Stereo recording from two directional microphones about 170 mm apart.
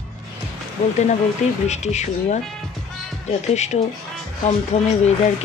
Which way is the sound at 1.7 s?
40° left (ahead or behind).